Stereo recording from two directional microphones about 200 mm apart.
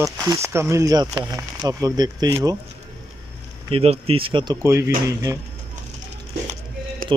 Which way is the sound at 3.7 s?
30° right (ahead or behind).